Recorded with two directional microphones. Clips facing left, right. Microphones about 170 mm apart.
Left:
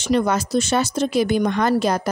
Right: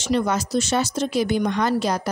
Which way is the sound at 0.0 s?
55° left (ahead or behind).